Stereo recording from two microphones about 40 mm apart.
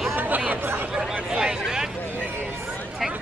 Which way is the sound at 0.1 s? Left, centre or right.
Right.